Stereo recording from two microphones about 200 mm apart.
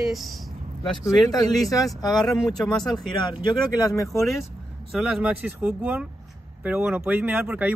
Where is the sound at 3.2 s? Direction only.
20° left (ahead or behind).